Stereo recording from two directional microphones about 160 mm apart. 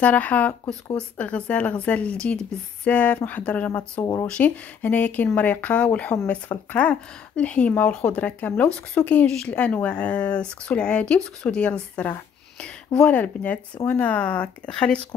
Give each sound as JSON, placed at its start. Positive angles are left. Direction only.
{"t": 0.0, "sound": "speech", "side_deg": 10}
{"t": 4.0, "sound": "speech", "side_deg": 20}
{"t": 4.3, "sound": "speech", "side_deg": 10}